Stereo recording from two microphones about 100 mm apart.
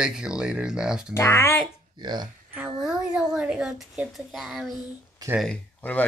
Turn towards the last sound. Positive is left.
turn(degrees=15)  # may be behind; listen again after turning